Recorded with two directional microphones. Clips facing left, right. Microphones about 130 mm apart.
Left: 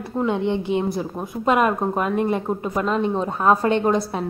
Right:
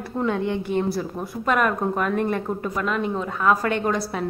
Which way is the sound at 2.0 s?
5° left (ahead or behind).